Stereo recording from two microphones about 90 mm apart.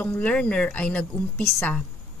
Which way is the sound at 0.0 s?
15° left (ahead or behind).